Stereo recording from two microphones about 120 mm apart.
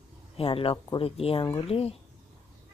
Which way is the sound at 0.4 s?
50° left (ahead or behind).